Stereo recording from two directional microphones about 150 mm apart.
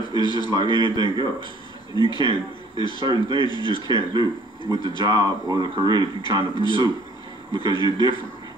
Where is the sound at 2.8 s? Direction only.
30° left (ahead or behind).